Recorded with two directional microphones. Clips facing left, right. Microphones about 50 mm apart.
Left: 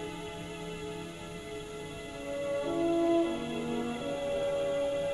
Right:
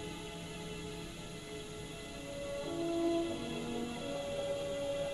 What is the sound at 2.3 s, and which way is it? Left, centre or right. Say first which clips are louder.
Music: left 8 dB; left.